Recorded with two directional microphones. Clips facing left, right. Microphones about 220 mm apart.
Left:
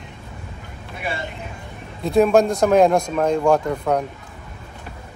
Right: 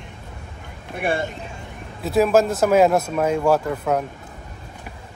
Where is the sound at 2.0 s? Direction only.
5° right (ahead or behind).